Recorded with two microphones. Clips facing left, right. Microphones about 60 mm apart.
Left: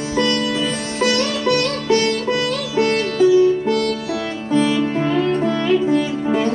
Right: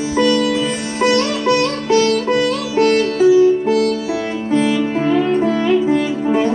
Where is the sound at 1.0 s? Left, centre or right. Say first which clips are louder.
Right 4 dB; centre.